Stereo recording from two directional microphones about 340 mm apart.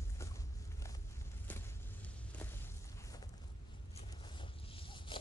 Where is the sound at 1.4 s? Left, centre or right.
Centre.